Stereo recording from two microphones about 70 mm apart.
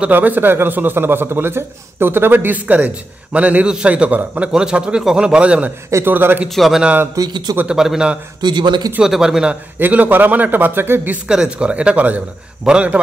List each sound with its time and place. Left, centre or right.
0.0 s a man's voice: right
6.0 s a man's voice: right
6.5 s a man's voice: centre
7.2 s speech: right
7.6 s speech: centre
8.4 s speech: right
9.0 s speech: centre
9.8 s a man's voice: right
11.2 s speech: centre